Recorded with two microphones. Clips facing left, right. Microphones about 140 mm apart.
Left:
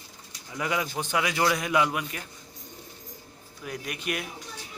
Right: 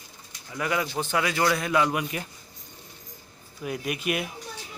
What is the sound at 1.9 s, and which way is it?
Speech, 5° right (ahead or behind).